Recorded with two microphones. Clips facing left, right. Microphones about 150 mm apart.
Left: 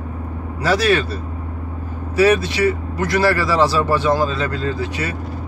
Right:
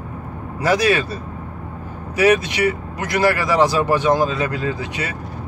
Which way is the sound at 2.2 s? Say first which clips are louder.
Left 1 dB; 15° right (ahead or behind).